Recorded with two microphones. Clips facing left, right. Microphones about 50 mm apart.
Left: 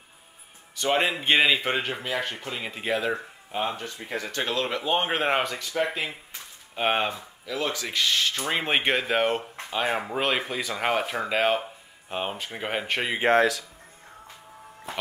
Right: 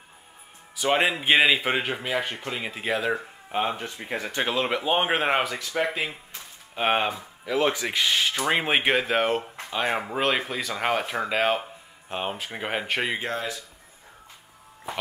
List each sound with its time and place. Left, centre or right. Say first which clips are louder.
0.7 s a man's voice: right 1 dB; centre
3.1 s a man's voice: right 2 dB; centre
7.4 s speech: right 5 dB; right
8.6 s speech: right 2 dB; centre
13.4 s speech: left 10 dB; left